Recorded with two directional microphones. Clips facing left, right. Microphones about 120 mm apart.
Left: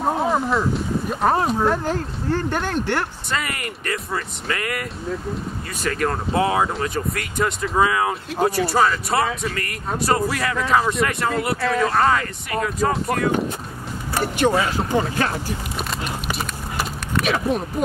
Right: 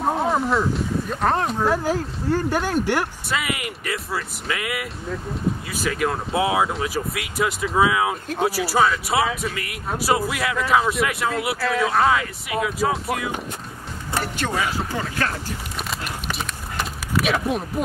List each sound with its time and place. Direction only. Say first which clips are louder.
0.0 s speech: left 1 dB; centre (ahead or behind)
14.1 s music: left 6 dB; 15° left (ahead or behind)
14.9 s speech: left 5 dB; 20° left (ahead or behind)
15.9 s a sound: left 1 dB; centre (ahead or behind)